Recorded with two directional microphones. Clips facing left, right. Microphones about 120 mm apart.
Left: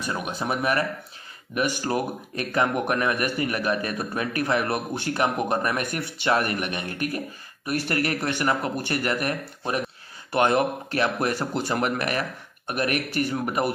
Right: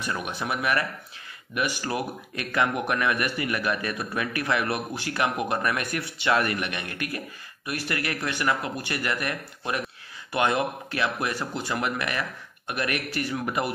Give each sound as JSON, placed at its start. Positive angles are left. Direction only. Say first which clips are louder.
{"t": 0.4, "sound": "speech", "louder": "left 3 dB", "side_deg": 30}